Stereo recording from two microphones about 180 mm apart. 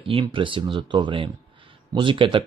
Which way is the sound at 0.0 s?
30° right (ahead or behind).